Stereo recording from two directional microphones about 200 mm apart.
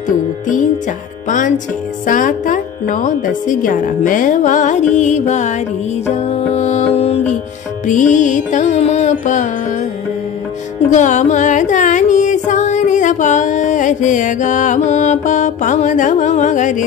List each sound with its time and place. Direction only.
2.0 s speech: 40° left (ahead or behind)
6.1 s music: 35° left (ahead or behind)
7.8 s speech: 40° left (ahead or behind)
10.9 s carnatic music: 40° left (ahead or behind)